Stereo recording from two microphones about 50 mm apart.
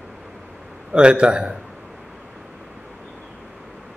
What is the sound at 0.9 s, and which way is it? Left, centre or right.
Speech, centre.